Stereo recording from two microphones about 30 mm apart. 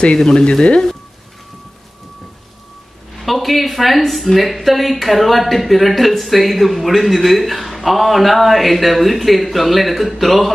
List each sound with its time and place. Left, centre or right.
0.0 s speech: left
3.2 s speech: centre